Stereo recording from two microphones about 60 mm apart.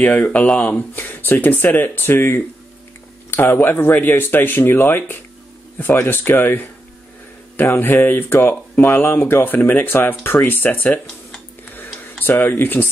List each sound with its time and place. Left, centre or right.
0.0 s speech: left
0.9 s speech: left
7.7 s speech: left
11.7 s tick-tock: left